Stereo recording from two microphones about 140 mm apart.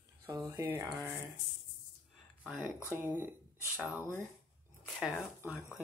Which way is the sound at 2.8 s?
15° right (ahead or behind).